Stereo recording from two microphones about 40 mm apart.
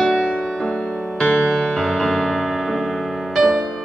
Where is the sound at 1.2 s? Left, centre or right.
Left.